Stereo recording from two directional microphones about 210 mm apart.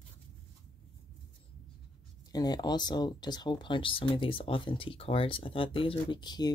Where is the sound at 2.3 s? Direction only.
20° left (ahead or behind).